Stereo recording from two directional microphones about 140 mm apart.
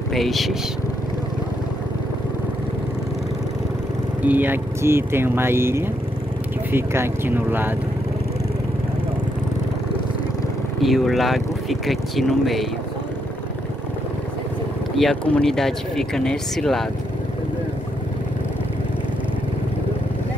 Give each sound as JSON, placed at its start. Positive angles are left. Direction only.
{"t": 0.1, "sound": "speech", "side_deg": 0}
{"t": 4.2, "sound": "speech", "side_deg": -10}
{"t": 10.8, "sound": "speech", "side_deg": 0}
{"t": 15.0, "sound": "speech", "side_deg": 5}